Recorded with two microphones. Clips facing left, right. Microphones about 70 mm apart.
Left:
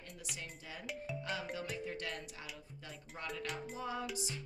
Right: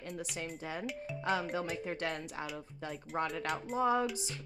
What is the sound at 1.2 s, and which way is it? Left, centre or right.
Speech, right.